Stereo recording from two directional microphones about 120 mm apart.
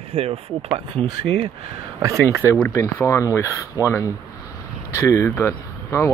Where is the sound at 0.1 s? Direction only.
55° right (ahead or behind).